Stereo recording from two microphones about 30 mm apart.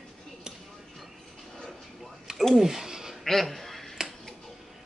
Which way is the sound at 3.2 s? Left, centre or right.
Centre.